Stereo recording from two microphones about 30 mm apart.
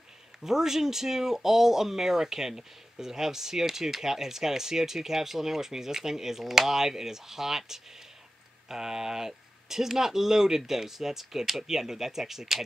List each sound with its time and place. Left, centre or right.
0.4 s speech: centre